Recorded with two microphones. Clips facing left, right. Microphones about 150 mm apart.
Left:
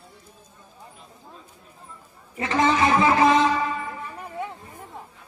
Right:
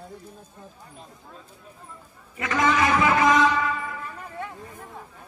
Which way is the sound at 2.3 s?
30° left (ahead or behind).